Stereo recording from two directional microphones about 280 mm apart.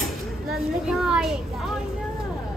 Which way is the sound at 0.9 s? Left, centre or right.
Centre.